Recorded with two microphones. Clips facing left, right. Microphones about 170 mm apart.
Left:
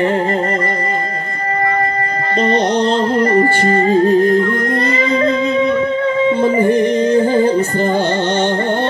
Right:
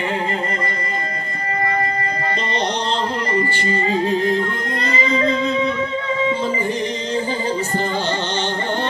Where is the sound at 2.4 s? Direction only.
50° left (ahead or behind).